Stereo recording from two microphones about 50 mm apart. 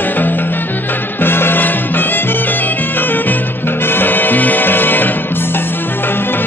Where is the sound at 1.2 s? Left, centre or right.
Left.